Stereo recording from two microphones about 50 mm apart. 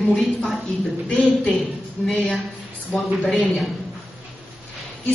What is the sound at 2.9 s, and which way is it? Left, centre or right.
Speech, centre.